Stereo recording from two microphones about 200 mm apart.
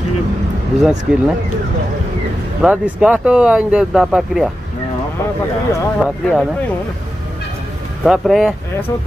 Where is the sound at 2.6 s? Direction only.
5° right (ahead or behind).